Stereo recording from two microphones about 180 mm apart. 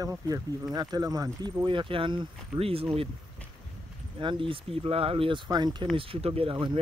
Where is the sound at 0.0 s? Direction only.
20° right (ahead or behind).